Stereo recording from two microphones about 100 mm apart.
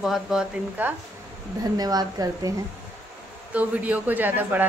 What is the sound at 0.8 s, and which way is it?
Speech, 15° right (ahead or behind).